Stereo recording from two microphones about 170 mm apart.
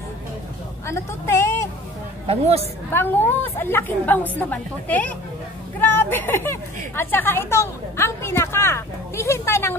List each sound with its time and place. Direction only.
0.8 s a sound: 15° left (ahead or behind)
2.2 s speech: 35° right (ahead or behind)
2.9 s speech: 10° left (ahead or behind)